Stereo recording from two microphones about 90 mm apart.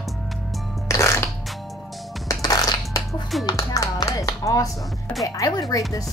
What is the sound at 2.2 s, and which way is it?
Music, 45° left (ahead or behind).